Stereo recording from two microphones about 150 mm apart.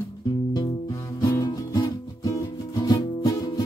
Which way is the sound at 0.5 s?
25° left (ahead or behind).